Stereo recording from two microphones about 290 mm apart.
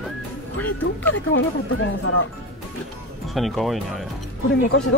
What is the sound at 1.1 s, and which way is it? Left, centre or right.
Speech, left.